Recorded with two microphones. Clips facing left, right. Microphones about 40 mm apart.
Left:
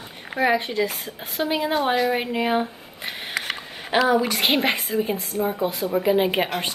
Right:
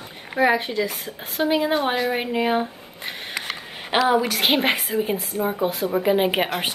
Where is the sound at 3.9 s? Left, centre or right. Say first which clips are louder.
Even; right.